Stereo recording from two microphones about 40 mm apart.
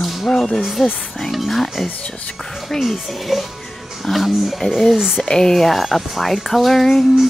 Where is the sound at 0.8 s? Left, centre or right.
Centre.